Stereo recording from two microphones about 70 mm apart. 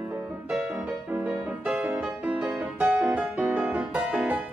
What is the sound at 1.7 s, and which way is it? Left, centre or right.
Music, centre.